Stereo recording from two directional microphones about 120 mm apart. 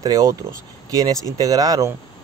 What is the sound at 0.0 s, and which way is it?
Speech, 30° right (ahead or behind).